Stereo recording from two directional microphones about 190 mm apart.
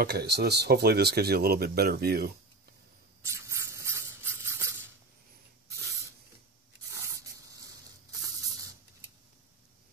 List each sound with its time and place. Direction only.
0.0 s speech: 60° right (ahead or behind)
3.2 s a sound: 15° right (ahead or behind)
6.9 s spray: 20° right (ahead or behind)